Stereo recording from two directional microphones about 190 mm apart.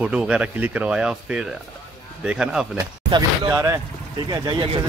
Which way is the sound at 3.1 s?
20° right (ahead or behind).